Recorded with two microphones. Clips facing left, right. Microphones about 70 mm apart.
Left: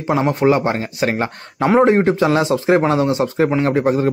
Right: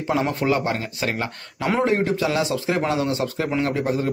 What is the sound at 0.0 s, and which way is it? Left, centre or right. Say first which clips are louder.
A man's voice: left 6 dB; left.